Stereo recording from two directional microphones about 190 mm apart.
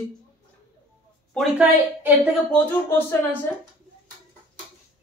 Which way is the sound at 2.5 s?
10° left (ahead or behind).